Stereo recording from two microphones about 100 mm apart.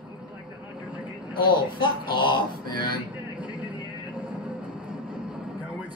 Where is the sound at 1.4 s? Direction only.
55° left (ahead or behind).